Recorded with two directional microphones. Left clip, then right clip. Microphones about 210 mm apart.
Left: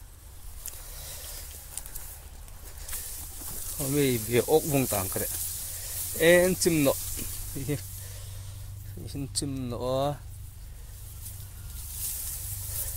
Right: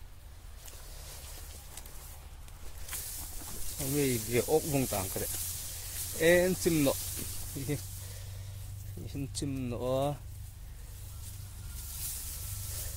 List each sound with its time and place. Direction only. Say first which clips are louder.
3.9 s speech: left 5 dB; 20° left (ahead or behind)
9.0 s speech: left 4 dB; centre (ahead or behind)